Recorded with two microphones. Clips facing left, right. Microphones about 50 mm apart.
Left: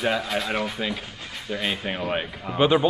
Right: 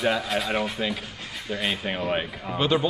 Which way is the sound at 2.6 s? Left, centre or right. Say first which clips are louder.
Left 4 dB; centre.